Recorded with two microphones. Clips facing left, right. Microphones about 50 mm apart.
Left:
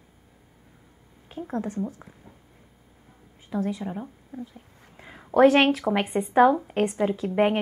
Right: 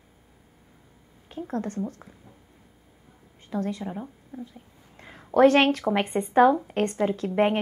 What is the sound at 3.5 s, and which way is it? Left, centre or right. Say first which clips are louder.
Speech: left 1 dB; centre.